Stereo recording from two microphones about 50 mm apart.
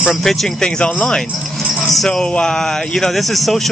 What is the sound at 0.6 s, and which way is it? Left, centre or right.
Speech, left.